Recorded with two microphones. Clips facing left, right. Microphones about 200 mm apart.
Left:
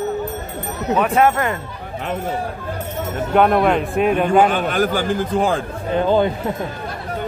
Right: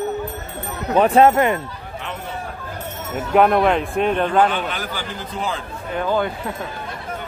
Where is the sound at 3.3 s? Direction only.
Centre (ahead or behind).